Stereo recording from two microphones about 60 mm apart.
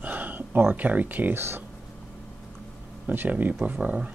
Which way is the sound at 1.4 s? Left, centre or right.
Right.